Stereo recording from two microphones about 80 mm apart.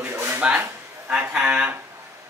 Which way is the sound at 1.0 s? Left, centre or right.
Centre.